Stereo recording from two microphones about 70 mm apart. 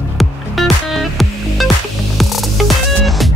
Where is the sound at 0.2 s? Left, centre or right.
Centre.